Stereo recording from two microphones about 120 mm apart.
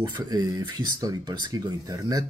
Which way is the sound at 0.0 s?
35° right (ahead or behind).